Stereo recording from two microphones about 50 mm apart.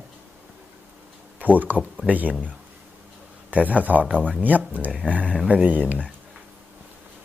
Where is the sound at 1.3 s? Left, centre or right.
Right.